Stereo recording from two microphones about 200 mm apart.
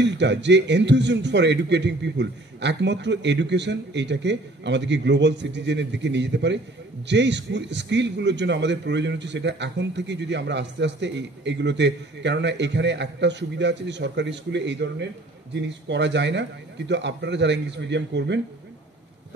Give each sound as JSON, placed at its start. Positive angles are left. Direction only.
{"t": 0.0, "sound": "speech", "side_deg": -60}